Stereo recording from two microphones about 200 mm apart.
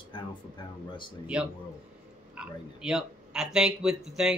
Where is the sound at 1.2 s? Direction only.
5° right (ahead or behind).